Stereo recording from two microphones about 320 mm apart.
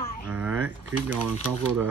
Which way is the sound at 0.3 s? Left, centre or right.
Centre.